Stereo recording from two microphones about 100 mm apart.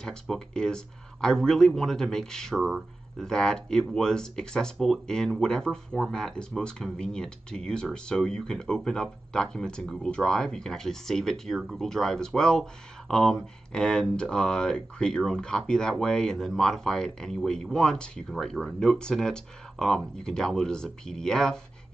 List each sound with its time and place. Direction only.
0.0 s speech: 5° left (ahead or behind)